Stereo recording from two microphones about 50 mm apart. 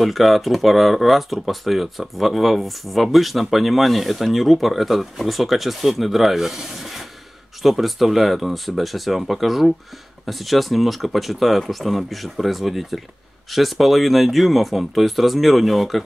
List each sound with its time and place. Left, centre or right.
0.0 s speech: centre